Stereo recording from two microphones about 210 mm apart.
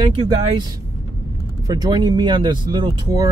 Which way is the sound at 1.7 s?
20° right (ahead or behind).